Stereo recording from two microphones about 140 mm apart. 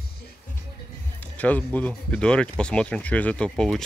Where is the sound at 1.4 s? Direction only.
10° left (ahead or behind).